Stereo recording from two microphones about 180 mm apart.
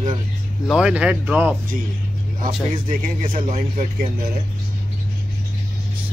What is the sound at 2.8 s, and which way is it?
Speech, 45° right (ahead or behind).